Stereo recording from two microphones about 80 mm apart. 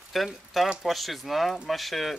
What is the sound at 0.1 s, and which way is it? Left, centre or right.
Speech, centre.